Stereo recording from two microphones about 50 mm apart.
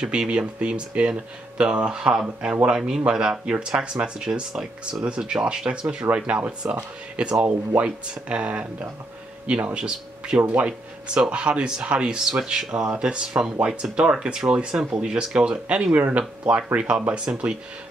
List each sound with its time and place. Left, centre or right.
0.0 s speech: centre
7.3 s speech: right
7.8 s speech: right
9.8 s speech: centre
10.4 s speech: right